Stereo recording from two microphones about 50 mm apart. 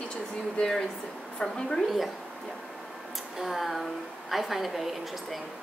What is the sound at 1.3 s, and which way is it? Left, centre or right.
Speech, centre.